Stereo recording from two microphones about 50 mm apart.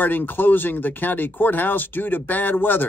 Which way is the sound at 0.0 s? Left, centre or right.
Left.